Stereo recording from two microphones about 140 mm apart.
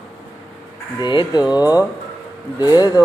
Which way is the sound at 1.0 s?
30° left (ahead or behind).